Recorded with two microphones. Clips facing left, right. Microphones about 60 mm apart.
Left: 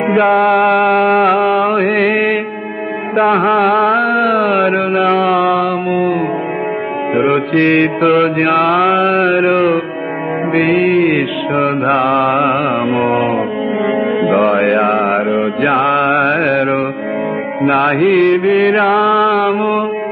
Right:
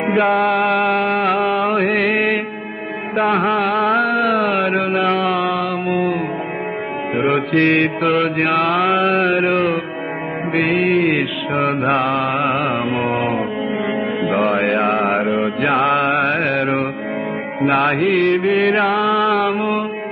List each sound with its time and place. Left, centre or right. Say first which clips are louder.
0.0 s music: left 4 dB; centre
0.4 s a sound: left 5 dB; left
1.6 s mantra: left 4 dB; centre
3.3 s mantra: left 5 dB; left
7.2 s mantra: left 3 dB; centre